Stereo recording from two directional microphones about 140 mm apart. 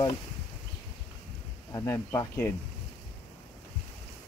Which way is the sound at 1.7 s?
20° left (ahead or behind).